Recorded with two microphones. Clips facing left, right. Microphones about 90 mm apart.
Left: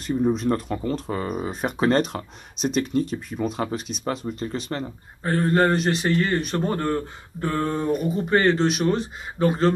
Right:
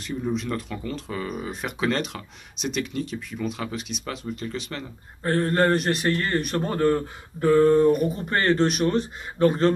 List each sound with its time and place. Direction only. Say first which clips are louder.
0.0 s speech: left 6 dB; 40° left (ahead or behind)
5.2 s a man's voice: left 1 dB; 5° left (ahead or behind)